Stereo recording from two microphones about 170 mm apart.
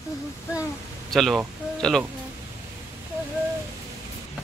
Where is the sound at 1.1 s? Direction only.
Centre (ahead or behind).